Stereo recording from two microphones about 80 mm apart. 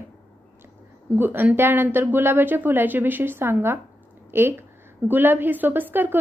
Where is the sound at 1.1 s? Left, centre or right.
Right.